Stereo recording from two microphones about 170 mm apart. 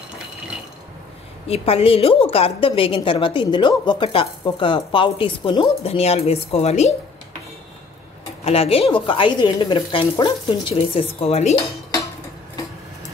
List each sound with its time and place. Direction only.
1.5 s a woman's voice: 35° left (ahead or behind)
8.5 s a woman's voice: 35° left (ahead or behind)